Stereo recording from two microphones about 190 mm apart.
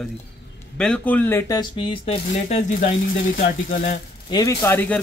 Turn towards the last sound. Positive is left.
turn(degrees=15)  # may be behind; listen again after turning